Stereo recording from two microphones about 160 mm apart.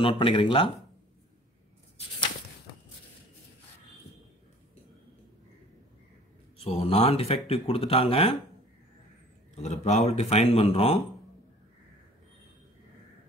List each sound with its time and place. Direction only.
0.0 s speech: 35° left (ahead or behind)
6.6 s speech: 40° left (ahead or behind)
9.6 s speech: 45° left (ahead or behind)